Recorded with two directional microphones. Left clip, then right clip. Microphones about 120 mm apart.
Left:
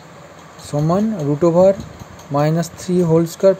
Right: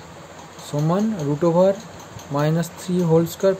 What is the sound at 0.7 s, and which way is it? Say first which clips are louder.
Speech: left 4 dB; 25° left (ahead or behind).